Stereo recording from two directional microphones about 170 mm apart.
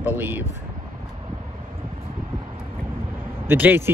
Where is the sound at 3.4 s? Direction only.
10° right (ahead or behind).